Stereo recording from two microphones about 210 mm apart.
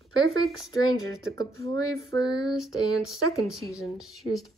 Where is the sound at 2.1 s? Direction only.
20° left (ahead or behind).